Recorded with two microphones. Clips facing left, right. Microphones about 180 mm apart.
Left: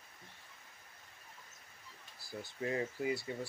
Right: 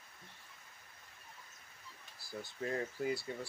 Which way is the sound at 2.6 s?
5° left (ahead or behind).